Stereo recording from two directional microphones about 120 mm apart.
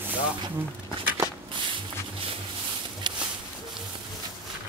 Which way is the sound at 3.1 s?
40° right (ahead or behind).